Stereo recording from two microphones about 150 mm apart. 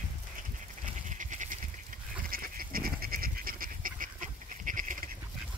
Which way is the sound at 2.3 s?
75° right (ahead or behind).